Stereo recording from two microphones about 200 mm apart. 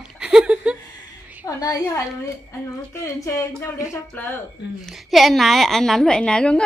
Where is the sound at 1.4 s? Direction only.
15° left (ahead or behind).